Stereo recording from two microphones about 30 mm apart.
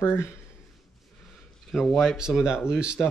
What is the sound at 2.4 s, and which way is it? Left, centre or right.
Speech, right.